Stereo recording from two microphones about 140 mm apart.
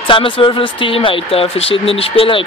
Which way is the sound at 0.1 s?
35° left (ahead or behind).